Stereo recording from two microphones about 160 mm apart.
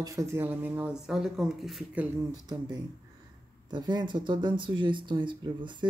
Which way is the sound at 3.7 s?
30° right (ahead or behind).